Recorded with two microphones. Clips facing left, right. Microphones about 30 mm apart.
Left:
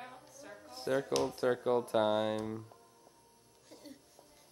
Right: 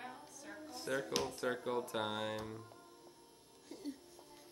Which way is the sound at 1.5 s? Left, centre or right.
Centre.